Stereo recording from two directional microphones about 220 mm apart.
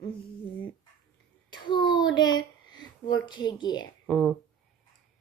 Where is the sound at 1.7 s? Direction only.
20° left (ahead or behind).